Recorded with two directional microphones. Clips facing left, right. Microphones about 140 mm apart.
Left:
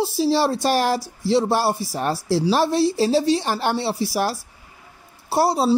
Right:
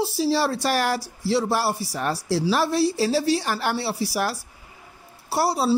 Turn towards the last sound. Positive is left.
turn(degrees=20)  # may be behind; listen again after turning